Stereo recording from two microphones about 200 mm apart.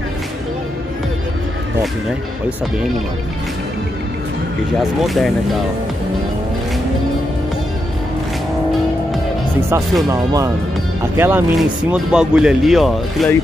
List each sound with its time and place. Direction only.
5.0 s speech: centre (ahead or behind)
10.0 s speech: 15° right (ahead or behind); by 13.3 s centre (ahead or behind)